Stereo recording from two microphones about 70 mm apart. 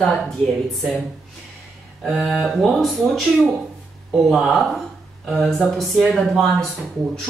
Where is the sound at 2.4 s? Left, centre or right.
Centre.